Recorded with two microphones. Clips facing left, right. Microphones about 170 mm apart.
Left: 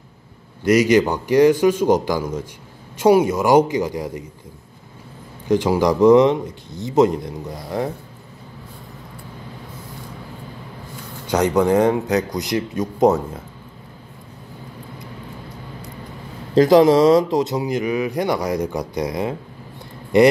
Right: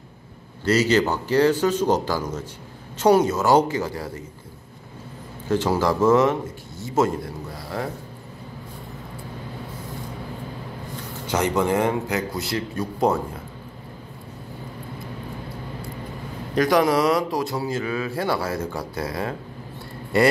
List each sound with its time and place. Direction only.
0.7 s speech: 15° left (ahead or behind)
5.5 s speech: 15° left (ahead or behind)
11.2 s speech: 15° left (ahead or behind)
16.5 s speech: 25° left (ahead or behind)